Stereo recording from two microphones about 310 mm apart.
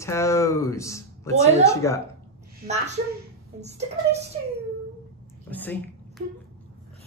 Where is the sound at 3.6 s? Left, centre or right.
Right.